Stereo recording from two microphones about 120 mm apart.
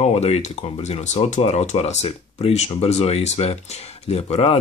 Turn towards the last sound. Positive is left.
turn(degrees=60)  # may be behind; listen again after turning